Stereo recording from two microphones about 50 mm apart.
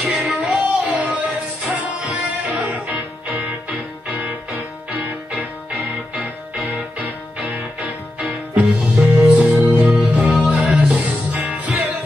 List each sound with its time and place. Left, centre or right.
0.0 s music: right
6.1 s music: right